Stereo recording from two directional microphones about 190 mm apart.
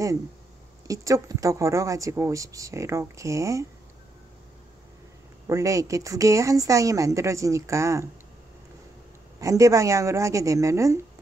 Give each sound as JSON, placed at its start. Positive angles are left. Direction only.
{"t": 0.8, "sound": "speech", "side_deg": -15}
{"t": 5.5, "sound": "speech", "side_deg": -15}
{"t": 9.4, "sound": "speech", "side_deg": -15}